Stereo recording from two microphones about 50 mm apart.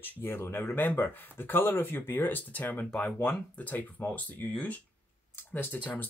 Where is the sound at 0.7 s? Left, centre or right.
Left.